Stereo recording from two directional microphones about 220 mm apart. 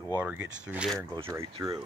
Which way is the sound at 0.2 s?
10° right (ahead or behind).